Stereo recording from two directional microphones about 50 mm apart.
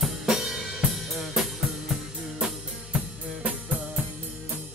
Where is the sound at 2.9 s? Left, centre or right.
Right.